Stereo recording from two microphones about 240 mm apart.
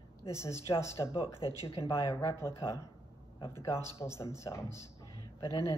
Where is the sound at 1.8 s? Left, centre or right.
Centre.